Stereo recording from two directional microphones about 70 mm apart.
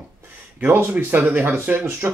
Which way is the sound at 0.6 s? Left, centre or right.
Right.